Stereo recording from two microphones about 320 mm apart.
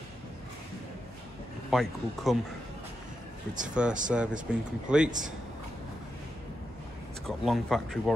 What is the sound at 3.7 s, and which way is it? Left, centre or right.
Speech, centre.